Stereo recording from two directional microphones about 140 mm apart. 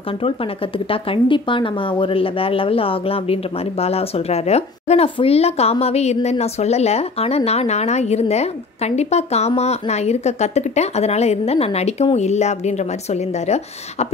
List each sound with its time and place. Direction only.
0.7 s speech: 40° left (ahead or behind)